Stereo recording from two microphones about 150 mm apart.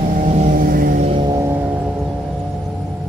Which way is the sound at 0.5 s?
70° right (ahead or behind).